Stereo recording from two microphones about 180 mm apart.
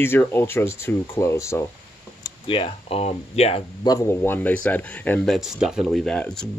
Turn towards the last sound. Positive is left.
turn(degrees=5)  # may be behind; listen again after turning